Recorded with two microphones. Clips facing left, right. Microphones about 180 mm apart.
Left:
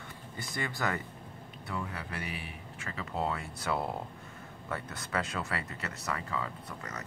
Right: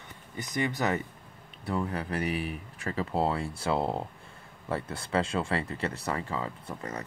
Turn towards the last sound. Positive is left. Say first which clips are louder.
# right 5 dB
turn(degrees=-30)  # may be behind; listen again after turning